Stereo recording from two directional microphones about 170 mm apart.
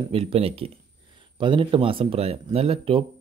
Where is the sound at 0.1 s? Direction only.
35° right (ahead or behind).